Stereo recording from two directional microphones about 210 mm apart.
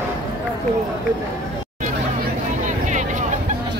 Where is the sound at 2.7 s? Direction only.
35° right (ahead or behind).